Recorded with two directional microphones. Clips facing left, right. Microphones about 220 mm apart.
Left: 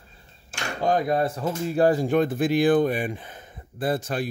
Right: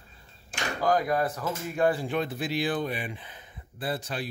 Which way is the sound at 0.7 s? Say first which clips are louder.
Left 3 dB; 25° left (ahead or behind).